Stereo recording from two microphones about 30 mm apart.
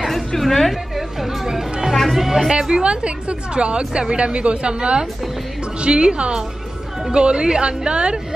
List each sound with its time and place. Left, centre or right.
0.4 s a woman's voice: centre
0.9 s speech: centre
2.7 s a woman's voice: right